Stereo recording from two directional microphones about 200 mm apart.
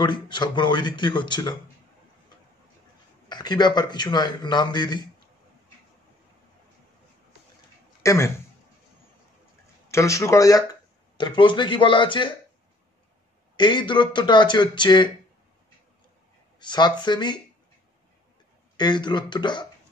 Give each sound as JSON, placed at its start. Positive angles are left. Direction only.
{"t": 0.0, "sound": "a man's voice", "side_deg": 25}
{"t": 3.3, "sound": "a man's voice", "side_deg": 20}
{"t": 8.0, "sound": "a man's voice", "side_deg": 15}
{"t": 9.8, "sound": "speech", "side_deg": 15}
{"t": 13.6, "sound": "a man's voice", "side_deg": 25}
{"t": 16.5, "sound": "a man's voice", "side_deg": 20}
{"t": 18.8, "sound": "a man's voice", "side_deg": 20}